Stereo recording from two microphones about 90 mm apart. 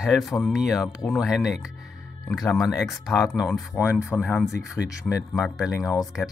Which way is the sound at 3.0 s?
Centre (ahead or behind).